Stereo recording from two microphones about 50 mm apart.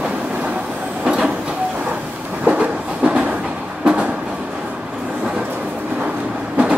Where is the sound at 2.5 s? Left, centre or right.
Right.